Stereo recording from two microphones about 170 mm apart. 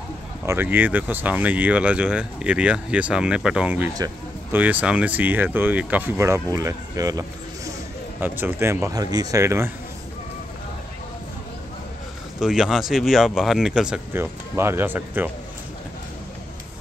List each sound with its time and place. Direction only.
0.5 s speech: 10° right (ahead or behind)
3.9 s a sound: 20° right (ahead or behind)
4.6 s speech: 10° right (ahead or behind)
12.4 s speech: 5° right (ahead or behind)